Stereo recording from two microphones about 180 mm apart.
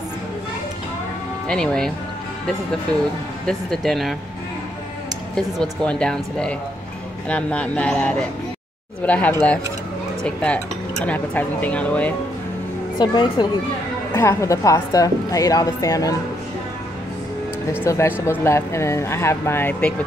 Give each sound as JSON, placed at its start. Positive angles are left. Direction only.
{"t": 1.5, "sound": "speech", "side_deg": 5}
{"t": 3.4, "sound": "speech", "side_deg": 0}
{"t": 5.3, "sound": "a woman's voice", "side_deg": 5}
{"t": 13.0, "sound": "a woman's voice", "side_deg": 25}
{"t": 17.8, "sound": "a woman's voice", "side_deg": 15}